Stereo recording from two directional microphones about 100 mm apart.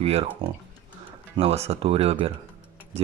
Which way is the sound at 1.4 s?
90° right.